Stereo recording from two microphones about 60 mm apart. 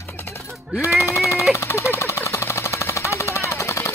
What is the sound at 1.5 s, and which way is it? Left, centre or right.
Jackhammer, left.